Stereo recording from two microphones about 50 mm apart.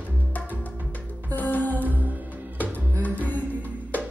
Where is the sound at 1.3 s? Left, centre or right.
Left.